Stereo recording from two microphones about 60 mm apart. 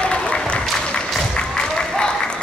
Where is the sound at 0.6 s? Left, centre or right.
Centre.